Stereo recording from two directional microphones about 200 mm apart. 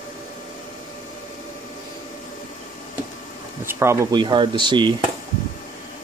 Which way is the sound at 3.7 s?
15° right (ahead or behind).